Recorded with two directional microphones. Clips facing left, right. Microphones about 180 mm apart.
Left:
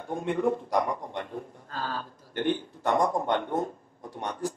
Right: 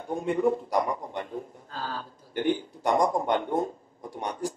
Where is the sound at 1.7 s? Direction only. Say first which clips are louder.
Left 2 dB; 45° left (ahead or behind).